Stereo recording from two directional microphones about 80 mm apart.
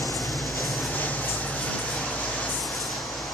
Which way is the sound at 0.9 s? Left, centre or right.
Centre.